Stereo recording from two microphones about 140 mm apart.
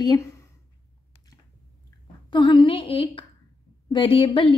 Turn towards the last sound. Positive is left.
turn(degrees=40)  # may be behind; listen again after turning